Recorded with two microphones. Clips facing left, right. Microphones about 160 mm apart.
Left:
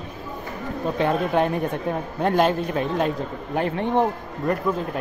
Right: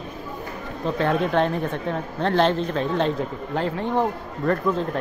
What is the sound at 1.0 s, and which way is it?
A man's voice, 10° left (ahead or behind).